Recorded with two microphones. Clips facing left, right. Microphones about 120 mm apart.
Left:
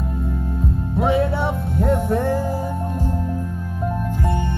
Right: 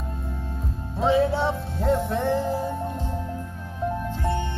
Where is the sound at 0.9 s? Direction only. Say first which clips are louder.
Left 1 dB; 55° left (ahead or behind).